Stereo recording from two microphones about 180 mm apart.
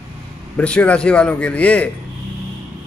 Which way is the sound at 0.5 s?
5° left (ahead or behind).